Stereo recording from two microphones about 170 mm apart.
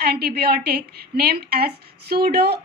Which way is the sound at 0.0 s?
65° right (ahead or behind).